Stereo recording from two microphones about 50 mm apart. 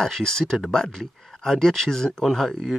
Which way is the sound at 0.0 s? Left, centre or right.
Centre.